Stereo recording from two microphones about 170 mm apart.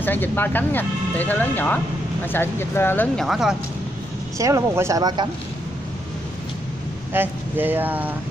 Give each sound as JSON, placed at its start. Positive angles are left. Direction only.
{"t": 0.0, "sound": "speech", "side_deg": 10}
{"t": 3.3, "sound": "speech", "side_deg": 0}
{"t": 4.4, "sound": "speech", "side_deg": -15}
{"t": 7.1, "sound": "speech", "side_deg": -10}